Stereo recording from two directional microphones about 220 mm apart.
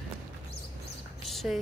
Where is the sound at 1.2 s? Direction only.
Centre (ahead or behind).